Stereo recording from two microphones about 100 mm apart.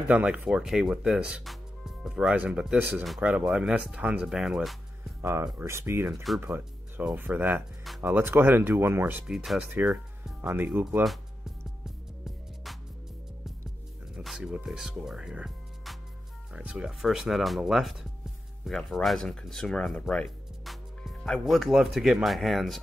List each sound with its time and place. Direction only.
0.1 s speech: 15° right (ahead or behind)
5.2 s speech: 30° right (ahead or behind)
9.3 s speech: 5° right (ahead or behind)
10.4 s speech: 15° right (ahead or behind)
11.8 s music: 5° right (ahead or behind)
14.1 s speech: 5° right (ahead or behind)
18.7 s speech: 5° left (ahead or behind)